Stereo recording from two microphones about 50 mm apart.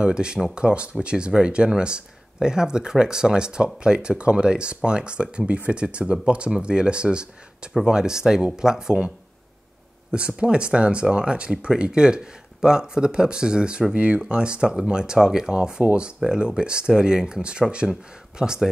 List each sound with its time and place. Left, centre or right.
0.0 s speech: centre
10.1 s speech: right
15.8 s speech: right
16.3 s speech: centre